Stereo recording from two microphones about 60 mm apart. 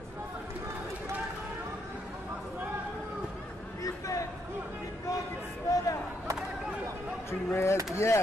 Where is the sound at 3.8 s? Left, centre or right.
Left.